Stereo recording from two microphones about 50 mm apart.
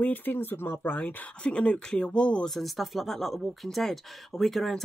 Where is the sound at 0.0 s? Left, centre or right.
Left.